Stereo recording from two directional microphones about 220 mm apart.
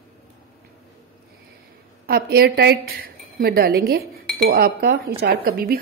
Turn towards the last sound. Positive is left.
turn(degrees=-45)  # may be behind; listen again after turning